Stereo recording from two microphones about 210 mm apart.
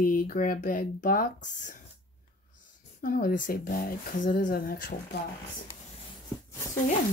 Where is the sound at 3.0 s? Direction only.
40° left (ahead or behind).